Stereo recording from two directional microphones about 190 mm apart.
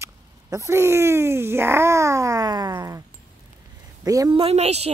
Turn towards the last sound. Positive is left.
turn(degrees=-35)  # may be behind; listen again after turning